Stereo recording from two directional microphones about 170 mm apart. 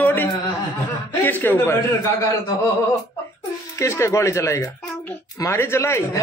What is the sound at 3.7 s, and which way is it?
A man's voice, 15° left (ahead or behind).